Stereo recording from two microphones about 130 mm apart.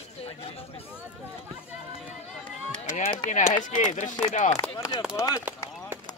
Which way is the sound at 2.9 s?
65° left (ahead or behind).